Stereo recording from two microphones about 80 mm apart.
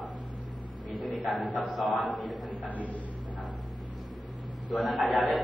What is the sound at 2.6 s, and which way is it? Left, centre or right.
Speech, centre.